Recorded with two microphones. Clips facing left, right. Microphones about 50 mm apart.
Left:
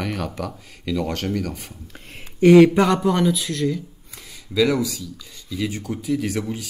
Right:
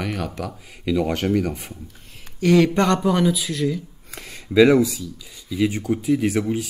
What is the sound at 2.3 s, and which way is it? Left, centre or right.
Speech, centre.